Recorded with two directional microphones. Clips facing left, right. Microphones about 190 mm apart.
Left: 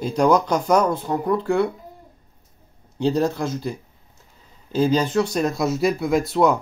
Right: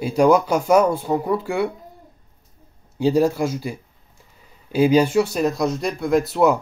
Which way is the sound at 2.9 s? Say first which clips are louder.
Right 3 dB; 10° right (ahead or behind).